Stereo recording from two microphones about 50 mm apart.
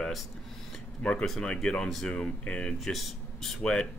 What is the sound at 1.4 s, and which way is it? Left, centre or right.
Speech, centre.